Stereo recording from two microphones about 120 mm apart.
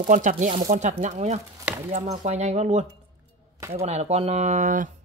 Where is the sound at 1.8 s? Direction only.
60° right (ahead or behind); by 4.9 s 90° right.